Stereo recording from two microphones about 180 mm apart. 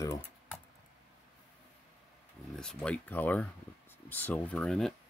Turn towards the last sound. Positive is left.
turn(degrees=0)  # may be behind; listen again after turning